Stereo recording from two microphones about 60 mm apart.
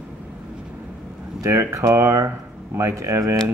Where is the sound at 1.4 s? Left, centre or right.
Right.